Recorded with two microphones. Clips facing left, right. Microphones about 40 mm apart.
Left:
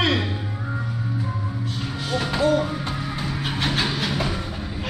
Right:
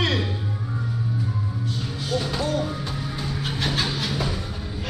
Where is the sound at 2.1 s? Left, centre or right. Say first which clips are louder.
Left 5 dB; left.